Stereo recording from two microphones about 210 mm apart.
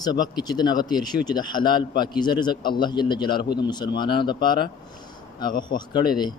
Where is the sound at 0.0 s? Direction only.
20° left (ahead or behind).